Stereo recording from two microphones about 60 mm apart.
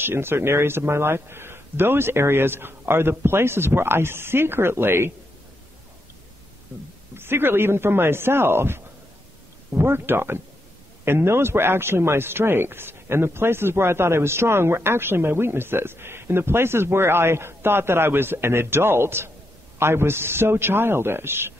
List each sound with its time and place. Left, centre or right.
0.0 s speech: right
7.2 s speech: right